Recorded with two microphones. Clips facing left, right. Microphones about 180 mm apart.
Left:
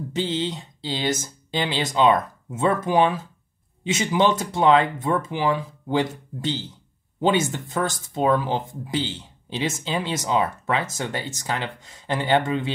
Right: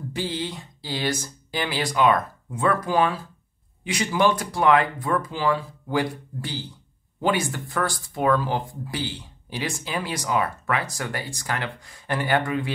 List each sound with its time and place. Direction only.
0.1 s speech: 20° left (ahead or behind)